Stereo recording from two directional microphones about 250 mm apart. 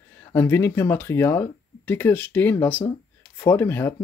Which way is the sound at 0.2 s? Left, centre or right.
Centre.